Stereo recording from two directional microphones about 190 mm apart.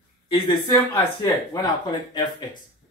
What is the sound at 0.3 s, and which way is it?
Speech, 25° left (ahead or behind).